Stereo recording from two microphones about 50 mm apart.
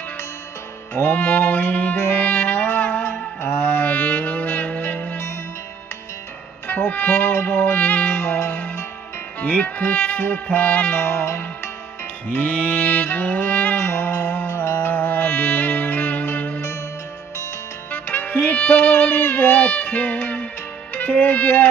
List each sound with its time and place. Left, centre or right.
0.9 s music: left
6.7 s music: left
9.4 s music: left
10.9 s music: left
12.3 s music: left
14.5 s music: left
14.9 s music: left
17.9 s music: left
20.9 s speech: left